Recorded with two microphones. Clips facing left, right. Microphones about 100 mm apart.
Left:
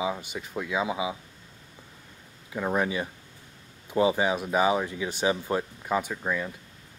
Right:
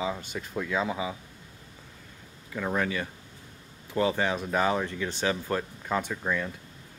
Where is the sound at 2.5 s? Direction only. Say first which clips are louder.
Left 2 dB; 20° left (ahead or behind).